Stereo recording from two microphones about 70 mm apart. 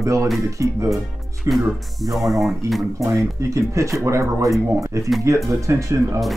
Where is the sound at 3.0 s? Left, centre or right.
Right.